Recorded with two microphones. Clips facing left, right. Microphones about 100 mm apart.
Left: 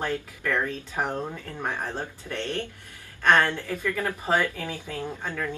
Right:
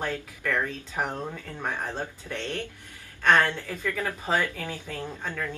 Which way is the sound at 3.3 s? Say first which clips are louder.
Left 1 dB; 15° left (ahead or behind).